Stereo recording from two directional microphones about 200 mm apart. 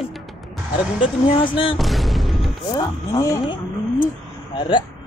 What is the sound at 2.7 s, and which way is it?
Speech, 15° left (ahead or behind).